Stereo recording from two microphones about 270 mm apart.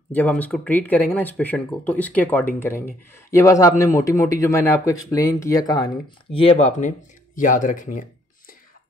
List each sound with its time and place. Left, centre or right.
0.1 s speech: centre; by 8.5 s left